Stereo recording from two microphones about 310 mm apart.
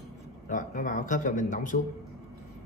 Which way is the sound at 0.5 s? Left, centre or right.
Left.